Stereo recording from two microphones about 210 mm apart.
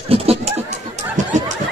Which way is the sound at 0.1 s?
30° right (ahead or behind).